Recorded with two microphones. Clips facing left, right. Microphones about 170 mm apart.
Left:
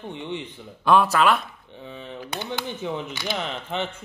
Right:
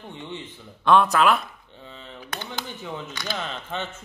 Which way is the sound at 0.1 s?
20° left (ahead or behind).